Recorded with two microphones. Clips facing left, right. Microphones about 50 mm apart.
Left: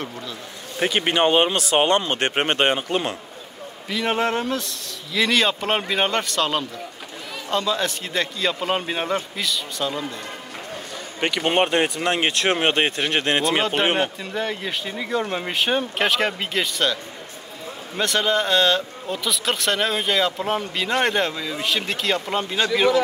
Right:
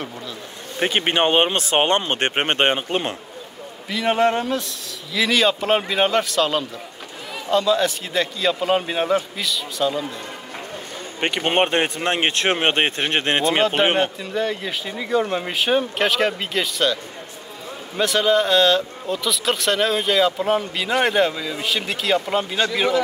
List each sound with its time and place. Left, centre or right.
0.7 s speech: right
3.9 s speech: centre
11.1 s speech: right
13.6 s speech: centre